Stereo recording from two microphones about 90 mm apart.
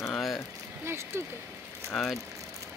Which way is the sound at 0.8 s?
30° right (ahead or behind).